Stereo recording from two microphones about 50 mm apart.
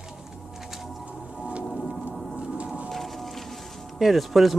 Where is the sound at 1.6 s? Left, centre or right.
Centre.